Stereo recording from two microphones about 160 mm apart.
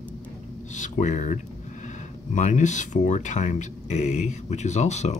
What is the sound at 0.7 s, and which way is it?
Speech, 50° left (ahead or behind).